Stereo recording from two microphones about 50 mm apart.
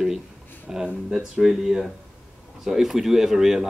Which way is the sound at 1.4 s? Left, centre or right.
Centre.